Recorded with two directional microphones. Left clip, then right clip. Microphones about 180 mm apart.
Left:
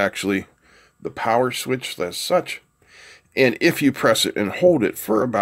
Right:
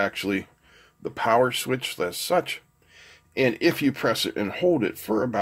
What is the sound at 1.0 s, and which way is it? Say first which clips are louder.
Speech: left 1 dB; 15° left (ahead or behind).